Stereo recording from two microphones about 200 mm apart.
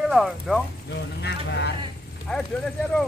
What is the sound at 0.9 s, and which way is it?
Speech, 60° left (ahead or behind).